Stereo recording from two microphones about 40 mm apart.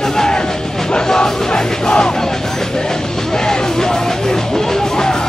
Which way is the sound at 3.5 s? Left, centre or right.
Centre.